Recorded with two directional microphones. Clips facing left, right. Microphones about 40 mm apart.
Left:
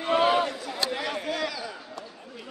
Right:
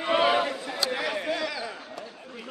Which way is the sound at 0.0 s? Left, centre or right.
Right.